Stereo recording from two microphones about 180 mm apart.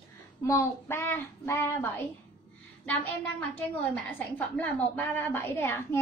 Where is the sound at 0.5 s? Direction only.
15° left (ahead or behind).